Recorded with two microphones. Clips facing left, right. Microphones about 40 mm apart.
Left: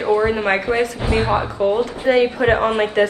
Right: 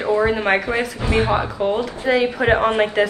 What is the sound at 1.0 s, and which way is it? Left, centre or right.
Speech, right.